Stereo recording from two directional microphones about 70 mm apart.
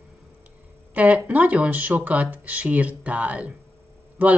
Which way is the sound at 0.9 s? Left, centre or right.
Centre.